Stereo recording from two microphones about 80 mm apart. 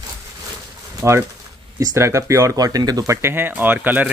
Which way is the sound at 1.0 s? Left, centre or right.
Right.